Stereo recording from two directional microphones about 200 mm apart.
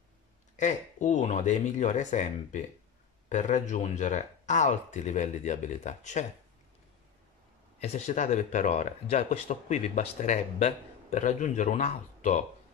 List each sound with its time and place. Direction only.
0.6 s speech: 40° left (ahead or behind)
7.8 s speech: 35° left (ahead or behind)